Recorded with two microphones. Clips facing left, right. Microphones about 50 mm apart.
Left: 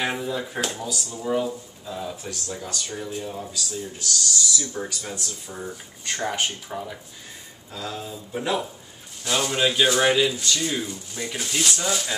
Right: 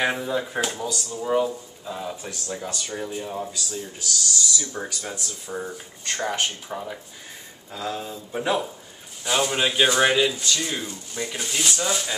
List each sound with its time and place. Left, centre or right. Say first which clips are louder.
0.0 s speech: right 2 dB; centre
6.2 s speech: even; centre
6.7 s speech: right 1 dB; centre
8.4 s speech: right 2 dB; centre